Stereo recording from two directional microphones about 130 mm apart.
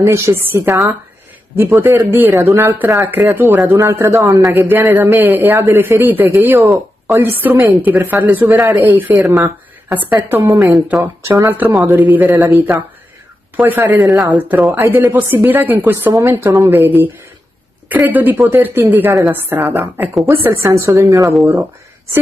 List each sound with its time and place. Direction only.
0.0 s a man's voice: 20° right (ahead or behind)
13.9 s a woman's voice: centre (ahead or behind)
14.8 s a woman's voice: 25° right (ahead or behind)